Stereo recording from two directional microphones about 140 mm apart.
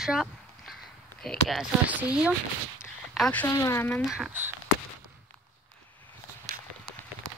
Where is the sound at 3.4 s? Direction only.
20° left (ahead or behind).